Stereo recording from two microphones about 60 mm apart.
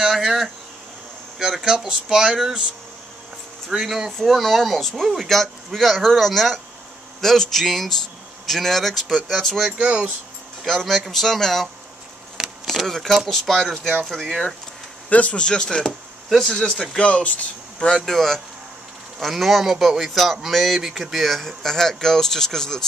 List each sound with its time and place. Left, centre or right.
0.0 s speech: centre
3.7 s speech: centre
4.2 s speech: centre
9.7 s speech: right
10.6 s speech: centre
15.0 s speech: left
16.3 s speech: centre
16.5 s speech: centre
17.1 s speech: left